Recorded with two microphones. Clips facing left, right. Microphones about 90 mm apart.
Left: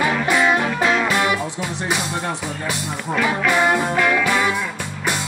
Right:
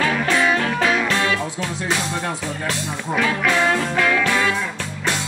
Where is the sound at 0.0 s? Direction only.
15° left (ahead or behind).